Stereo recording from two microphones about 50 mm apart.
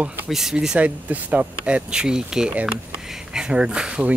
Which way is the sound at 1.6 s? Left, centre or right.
Right.